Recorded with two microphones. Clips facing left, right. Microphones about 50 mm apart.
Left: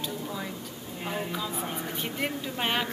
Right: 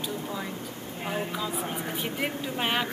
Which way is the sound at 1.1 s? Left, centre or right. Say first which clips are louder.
Right 1 dB; centre.